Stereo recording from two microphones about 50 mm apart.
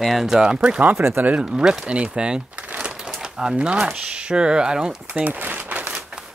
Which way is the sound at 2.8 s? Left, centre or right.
Centre.